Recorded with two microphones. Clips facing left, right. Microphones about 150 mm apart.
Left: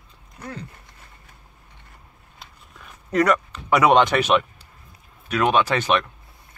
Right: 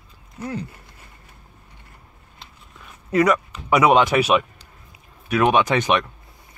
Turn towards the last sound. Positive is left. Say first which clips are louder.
# right 1 dB
turn(degrees=-15)  # may be behind; listen again after turning